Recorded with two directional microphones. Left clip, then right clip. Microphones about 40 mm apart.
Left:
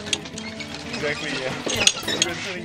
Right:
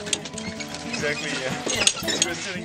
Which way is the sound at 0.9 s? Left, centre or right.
Right.